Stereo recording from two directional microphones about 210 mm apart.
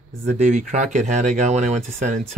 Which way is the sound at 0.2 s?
35° right (ahead or behind).